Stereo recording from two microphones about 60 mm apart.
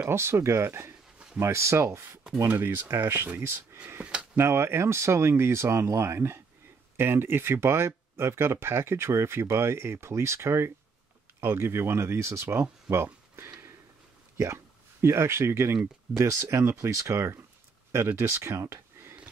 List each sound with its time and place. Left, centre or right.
0.1 s speech: right
2.4 s speech: right
3.3 s speech: right
4.0 s speech: right
4.4 s speech: right